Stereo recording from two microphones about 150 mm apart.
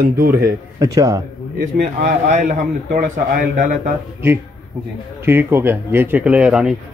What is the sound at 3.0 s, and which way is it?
Speech, 70° right (ahead or behind).